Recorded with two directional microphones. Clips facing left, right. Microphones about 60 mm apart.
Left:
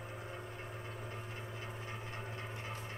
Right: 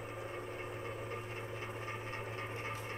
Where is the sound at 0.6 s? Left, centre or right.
Right.